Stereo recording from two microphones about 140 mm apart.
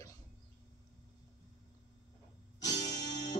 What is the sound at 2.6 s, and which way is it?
Music, 25° left (ahead or behind).